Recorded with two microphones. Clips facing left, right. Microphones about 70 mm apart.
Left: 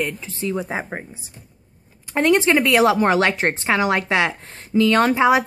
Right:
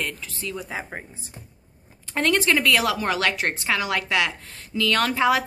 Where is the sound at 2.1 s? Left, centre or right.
Left.